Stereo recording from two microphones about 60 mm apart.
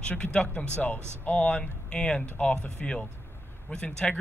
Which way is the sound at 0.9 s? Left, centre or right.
Right.